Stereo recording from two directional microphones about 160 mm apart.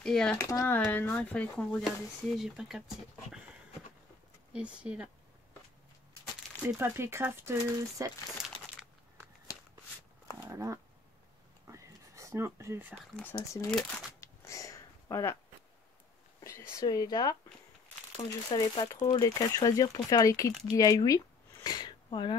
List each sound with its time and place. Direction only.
0.0 s speech: 5° left (ahead or behind)
0.4 s speech: 20° left (ahead or behind); by 2.8 s centre (ahead or behind)
4.5 s speech: 5° right (ahead or behind)
6.8 s speech: 15° right (ahead or behind)
8.4 s crumpling: 5° right (ahead or behind)
10.4 s a sound: 20° right (ahead or behind)
12.9 s speech: centre (ahead or behind)
13.2 s speech: 20° left (ahead or behind)
14.2 s a sound: 20° left (ahead or behind)
16.8 s speech: 25° left (ahead or behind)
21.6 s a sound: 25° left (ahead or behind)